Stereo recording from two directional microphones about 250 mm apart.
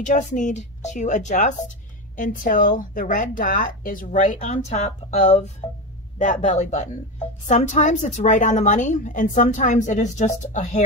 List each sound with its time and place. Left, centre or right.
0.0 s a woman's voice: left